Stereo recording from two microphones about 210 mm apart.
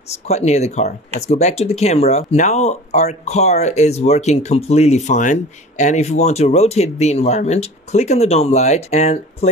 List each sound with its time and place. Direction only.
0.1 s speech: 30° left (ahead or behind)